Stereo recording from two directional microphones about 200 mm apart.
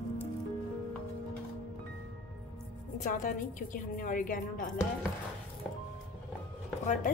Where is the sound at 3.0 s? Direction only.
40° left (ahead or behind).